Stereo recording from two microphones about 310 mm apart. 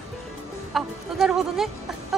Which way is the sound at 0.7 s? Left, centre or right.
Centre.